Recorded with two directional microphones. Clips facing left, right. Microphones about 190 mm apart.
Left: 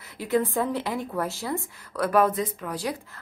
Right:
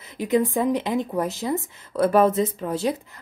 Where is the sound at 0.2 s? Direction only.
15° right (ahead or behind).